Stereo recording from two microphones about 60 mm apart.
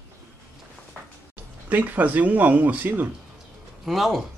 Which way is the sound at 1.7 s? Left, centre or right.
Right.